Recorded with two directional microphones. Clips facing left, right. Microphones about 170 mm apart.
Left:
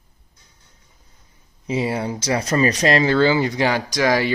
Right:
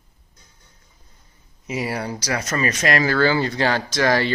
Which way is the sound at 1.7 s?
25° left (ahead or behind).